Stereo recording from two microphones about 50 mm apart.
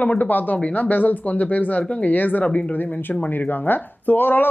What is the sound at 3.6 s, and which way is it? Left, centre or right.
Speech, left.